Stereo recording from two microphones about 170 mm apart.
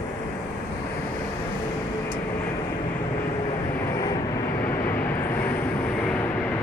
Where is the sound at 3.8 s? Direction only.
20° left (ahead or behind).